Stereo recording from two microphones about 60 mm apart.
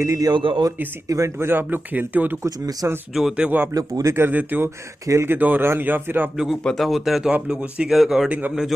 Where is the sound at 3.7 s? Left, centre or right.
Right.